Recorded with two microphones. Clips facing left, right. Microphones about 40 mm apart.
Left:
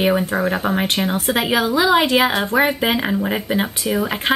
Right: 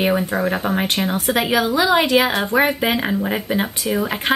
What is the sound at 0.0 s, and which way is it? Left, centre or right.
Speech, centre.